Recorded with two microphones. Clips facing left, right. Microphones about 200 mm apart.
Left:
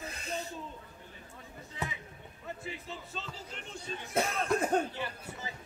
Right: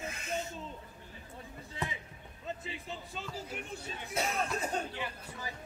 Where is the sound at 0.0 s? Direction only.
35° left (ahead or behind).